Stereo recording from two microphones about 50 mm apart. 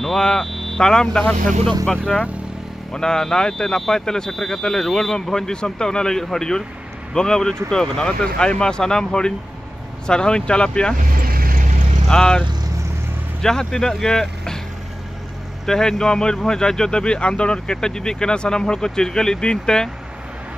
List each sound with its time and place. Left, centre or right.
0.0 s speech: centre
12.1 s speech: centre
15.6 s speech: centre